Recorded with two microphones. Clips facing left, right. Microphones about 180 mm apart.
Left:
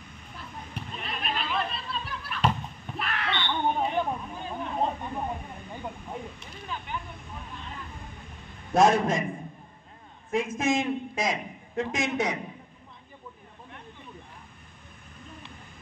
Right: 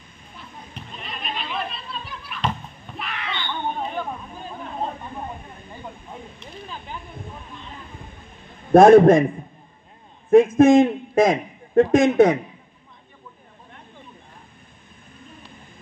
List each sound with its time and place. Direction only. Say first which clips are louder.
0.7 s a sound: even; centre (ahead or behind)
8.7 s a man's voice: right 12 dB; 55° right (ahead or behind)
10.3 s a man's voice: right 14 dB; 55° right (ahead or behind)